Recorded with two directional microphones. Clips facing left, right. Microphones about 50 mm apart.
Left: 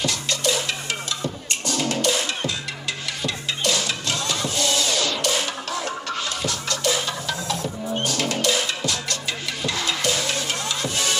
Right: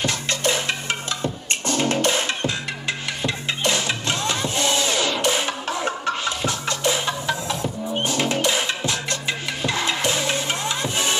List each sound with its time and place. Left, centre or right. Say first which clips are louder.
0.0 s music: right 1 dB; right